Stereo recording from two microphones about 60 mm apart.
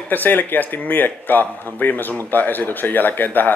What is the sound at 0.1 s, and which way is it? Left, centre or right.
Speech, left.